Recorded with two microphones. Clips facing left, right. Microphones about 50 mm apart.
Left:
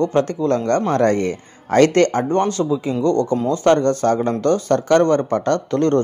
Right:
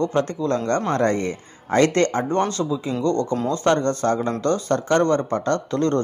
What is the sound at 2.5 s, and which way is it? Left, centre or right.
A man's voice, left.